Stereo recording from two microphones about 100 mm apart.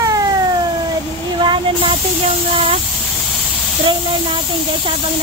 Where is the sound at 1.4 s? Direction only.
55° right (ahead or behind).